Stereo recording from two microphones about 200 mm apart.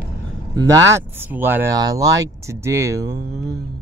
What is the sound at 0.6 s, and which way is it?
Speech, 15° right (ahead or behind).